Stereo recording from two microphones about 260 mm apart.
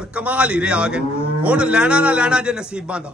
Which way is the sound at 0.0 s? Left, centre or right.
Centre.